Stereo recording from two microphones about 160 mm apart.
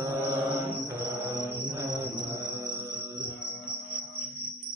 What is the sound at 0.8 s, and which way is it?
Mantra, 15° right (ahead or behind).